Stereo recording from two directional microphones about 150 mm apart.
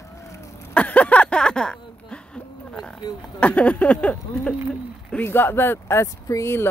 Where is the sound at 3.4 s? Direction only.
10° left (ahead or behind).